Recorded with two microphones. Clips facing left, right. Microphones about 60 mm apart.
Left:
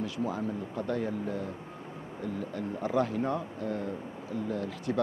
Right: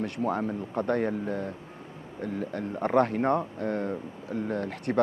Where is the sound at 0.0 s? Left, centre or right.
Right.